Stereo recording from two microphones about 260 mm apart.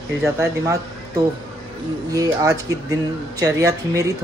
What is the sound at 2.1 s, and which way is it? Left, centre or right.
Speech, centre.